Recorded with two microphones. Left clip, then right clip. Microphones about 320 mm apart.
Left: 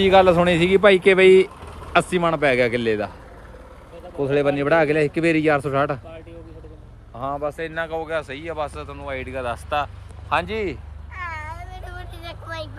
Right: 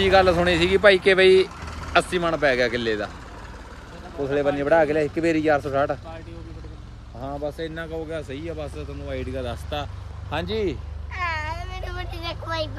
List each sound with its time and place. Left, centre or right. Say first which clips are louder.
0.2 s speech: left 3 dB; centre
4.3 s speech: left 1 dB; left
7.2 s speech: left 4 dB; left
8.1 s speech: left 5 dB; centre
9.3 s speech: left 9 dB; centre
11.1 s cat: right 4 dB; right